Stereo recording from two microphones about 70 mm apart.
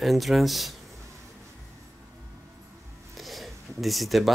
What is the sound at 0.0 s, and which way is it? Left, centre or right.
Speech, centre.